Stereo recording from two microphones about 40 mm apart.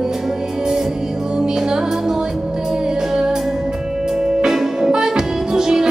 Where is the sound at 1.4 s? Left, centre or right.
Centre.